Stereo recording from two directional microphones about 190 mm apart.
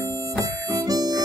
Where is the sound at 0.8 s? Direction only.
20° right (ahead or behind).